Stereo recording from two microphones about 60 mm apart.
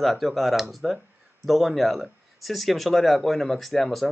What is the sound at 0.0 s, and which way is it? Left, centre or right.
Speech, centre.